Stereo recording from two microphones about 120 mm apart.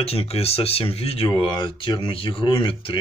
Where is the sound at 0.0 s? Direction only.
55° left (ahead or behind).